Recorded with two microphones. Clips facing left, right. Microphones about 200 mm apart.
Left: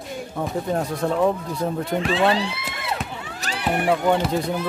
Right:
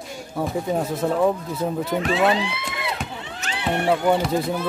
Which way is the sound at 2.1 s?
30° left (ahead or behind).